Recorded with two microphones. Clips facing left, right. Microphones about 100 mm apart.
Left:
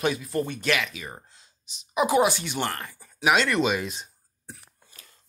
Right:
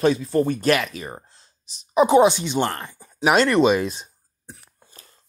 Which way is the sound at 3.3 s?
40° right (ahead or behind).